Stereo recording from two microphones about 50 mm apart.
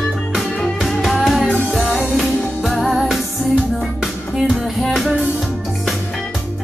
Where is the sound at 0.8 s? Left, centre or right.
Centre.